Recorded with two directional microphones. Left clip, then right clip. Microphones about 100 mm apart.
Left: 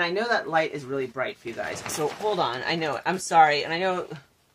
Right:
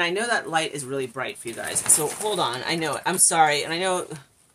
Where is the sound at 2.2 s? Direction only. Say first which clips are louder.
Even; 15° right (ahead or behind).